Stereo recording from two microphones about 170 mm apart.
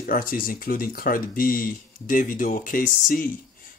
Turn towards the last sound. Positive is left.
turn(degrees=55)  # may be behind; listen again after turning